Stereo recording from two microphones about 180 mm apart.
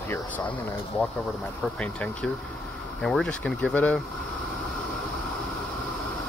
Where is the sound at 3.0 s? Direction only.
Centre (ahead or behind).